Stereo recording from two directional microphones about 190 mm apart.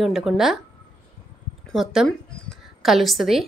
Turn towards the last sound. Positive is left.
turn(degrees=0)  # may be behind; listen again after turning